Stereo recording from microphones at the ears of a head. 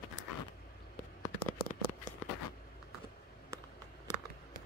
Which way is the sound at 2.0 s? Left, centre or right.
Left.